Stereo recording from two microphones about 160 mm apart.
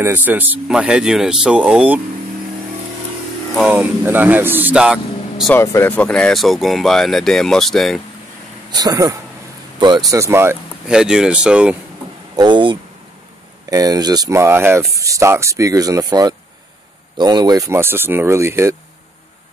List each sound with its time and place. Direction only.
0.0 s speech: 10° right (ahead or behind)
3.5 s speech: 10° right (ahead or behind)
5.5 s speech: 15° left (ahead or behind)
8.7 s speech: 20° right (ahead or behind)
10.9 s speech: 5° right (ahead or behind)
12.4 s speech: 30° right (ahead or behind)